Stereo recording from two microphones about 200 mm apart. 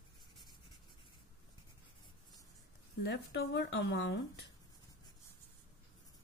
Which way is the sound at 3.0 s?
55° left (ahead or behind).